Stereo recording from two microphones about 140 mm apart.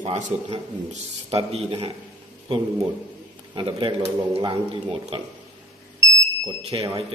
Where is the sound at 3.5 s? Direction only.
35° right (ahead or behind).